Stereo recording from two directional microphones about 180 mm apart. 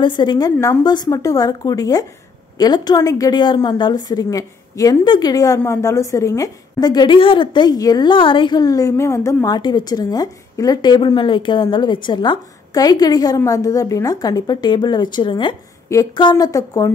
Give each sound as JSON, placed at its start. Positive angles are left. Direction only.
{"t": 0.0, "sound": "a woman's voice", "side_deg": 25}